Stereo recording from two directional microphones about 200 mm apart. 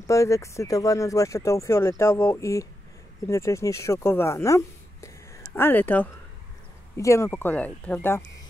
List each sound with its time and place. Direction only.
0.0 s speech: 15° left (ahead or behind)